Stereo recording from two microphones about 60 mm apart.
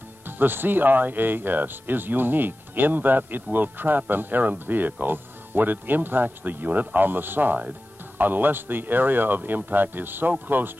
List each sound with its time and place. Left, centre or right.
0.3 s speech: right